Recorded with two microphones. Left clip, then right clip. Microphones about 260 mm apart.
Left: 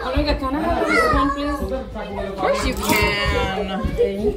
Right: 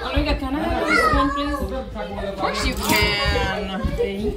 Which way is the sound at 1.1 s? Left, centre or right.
Centre.